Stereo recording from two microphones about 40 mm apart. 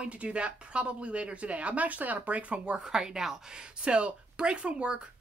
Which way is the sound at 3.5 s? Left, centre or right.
Right.